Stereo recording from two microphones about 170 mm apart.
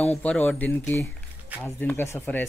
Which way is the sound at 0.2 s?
10° left (ahead or behind).